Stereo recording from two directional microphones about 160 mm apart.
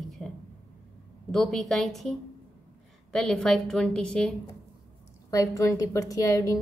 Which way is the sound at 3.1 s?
5° left (ahead or behind).